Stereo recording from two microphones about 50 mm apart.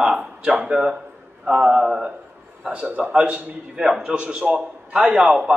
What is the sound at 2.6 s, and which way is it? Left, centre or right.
A man's voice, right.